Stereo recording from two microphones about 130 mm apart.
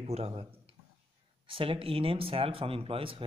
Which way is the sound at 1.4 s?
45° right (ahead or behind).